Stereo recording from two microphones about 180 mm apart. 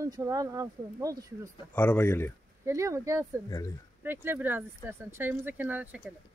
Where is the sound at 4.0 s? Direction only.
15° right (ahead or behind).